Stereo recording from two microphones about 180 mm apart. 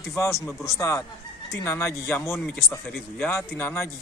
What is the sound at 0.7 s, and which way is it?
Speech, 15° left (ahead or behind).